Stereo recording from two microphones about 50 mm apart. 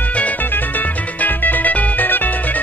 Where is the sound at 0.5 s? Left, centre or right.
Left.